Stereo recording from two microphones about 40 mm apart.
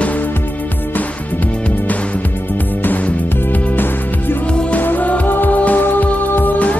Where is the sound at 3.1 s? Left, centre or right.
Left.